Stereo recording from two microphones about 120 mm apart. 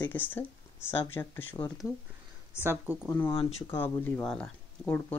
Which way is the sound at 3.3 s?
50° left (ahead or behind).